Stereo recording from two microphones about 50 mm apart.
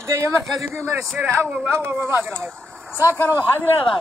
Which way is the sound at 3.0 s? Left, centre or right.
Right.